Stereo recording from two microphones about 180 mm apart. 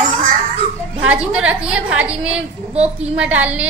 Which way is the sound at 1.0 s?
5° right (ahead or behind).